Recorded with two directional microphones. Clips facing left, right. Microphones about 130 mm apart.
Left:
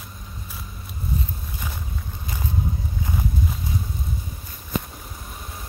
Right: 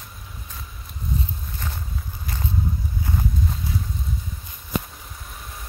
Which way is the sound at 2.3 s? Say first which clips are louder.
Even; 15° left (ahead or behind).